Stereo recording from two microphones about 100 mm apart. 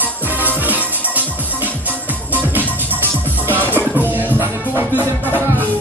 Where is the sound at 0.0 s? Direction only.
15° right (ahead or behind).